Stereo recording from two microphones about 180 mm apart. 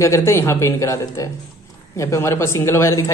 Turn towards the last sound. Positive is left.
turn(degrees=15)  # may be behind; listen again after turning